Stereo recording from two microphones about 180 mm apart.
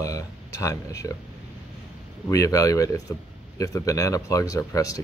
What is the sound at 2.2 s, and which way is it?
Speech, 20° left (ahead or behind).